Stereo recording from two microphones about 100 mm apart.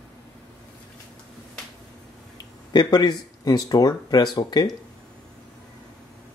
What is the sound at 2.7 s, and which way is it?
Speech, 45° left (ahead or behind).